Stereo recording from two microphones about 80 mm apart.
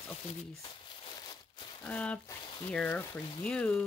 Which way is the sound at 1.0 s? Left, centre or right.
Left.